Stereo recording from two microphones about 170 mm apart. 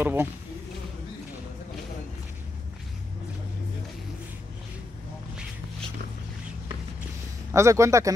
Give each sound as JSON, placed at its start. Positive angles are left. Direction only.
{"t": 0.0, "sound": "speech", "side_deg": -10}
{"t": 7.5, "sound": "speech", "side_deg": -15}